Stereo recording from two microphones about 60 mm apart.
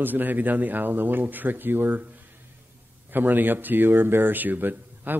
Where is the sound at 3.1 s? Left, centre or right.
Right.